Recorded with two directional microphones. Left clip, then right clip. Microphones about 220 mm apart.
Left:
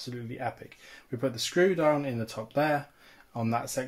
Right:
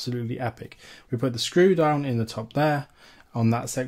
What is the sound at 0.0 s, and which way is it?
Speech, 50° right (ahead or behind).